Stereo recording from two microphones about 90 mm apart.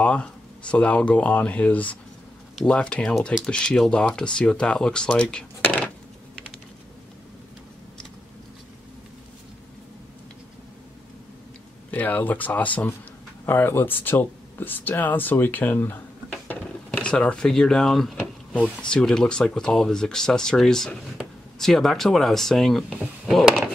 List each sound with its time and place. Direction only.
0.0 s speech: 10° left (ahead or behind)
11.9 s speech: 15° left (ahead or behind); by 23.4 s centre (ahead or behind)